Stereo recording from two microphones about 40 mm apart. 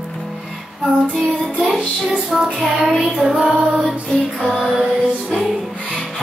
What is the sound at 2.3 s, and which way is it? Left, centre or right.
Child singing, centre.